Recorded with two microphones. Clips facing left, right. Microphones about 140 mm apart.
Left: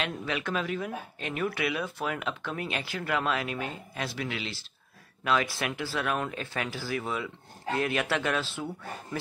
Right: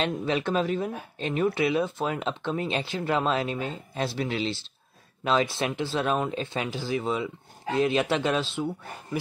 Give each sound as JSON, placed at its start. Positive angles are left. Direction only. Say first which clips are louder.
{"t": 0.0, "sound": "speech", "louder": "right 6 dB", "side_deg": -30}